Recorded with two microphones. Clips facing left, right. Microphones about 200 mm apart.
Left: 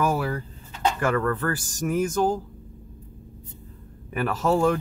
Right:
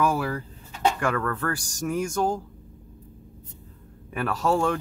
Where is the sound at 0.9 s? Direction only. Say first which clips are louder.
Left 3 dB; 5° left (ahead or behind).